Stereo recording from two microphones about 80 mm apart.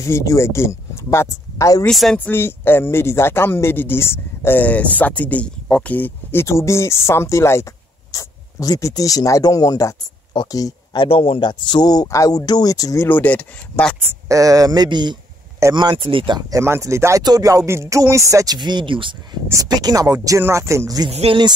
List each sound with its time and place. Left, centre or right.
0.0 s speech: left
1.9 s speech: centre
2.1 s speech: left
6.4 s speech: left
8.1 s speech: left
10.3 s a man's voice: left
13.0 s speech: left
14.3 s speech: right
16.4 s speech: right
17.2 s speech: right
18.6 s speech: right
19.5 s speech: right
21.3 s speech: right